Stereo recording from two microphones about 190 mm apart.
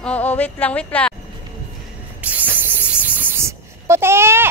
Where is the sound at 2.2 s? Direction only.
10° right (ahead or behind).